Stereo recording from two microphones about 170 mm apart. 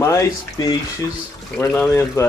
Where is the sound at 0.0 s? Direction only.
15° left (ahead or behind).